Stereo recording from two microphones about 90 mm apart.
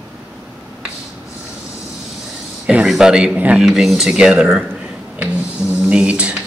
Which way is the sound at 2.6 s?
10° right (ahead or behind).